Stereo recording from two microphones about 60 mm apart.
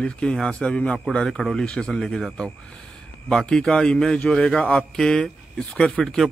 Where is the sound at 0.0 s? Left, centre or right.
Centre.